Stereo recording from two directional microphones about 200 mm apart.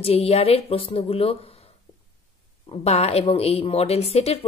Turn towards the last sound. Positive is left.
turn(degrees=30)  # may be behind; listen again after turning